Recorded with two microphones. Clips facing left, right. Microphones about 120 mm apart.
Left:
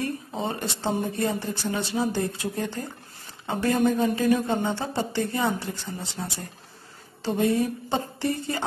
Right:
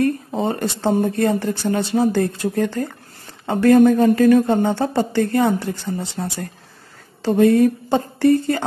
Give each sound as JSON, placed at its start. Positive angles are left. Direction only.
{"t": 0.3, "sound": "a woman's voice", "side_deg": -50}